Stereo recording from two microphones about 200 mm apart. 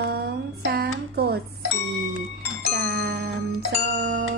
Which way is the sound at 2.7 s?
55° right (ahead or behind).